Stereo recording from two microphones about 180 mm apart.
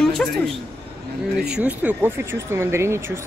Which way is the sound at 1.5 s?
10° right (ahead or behind).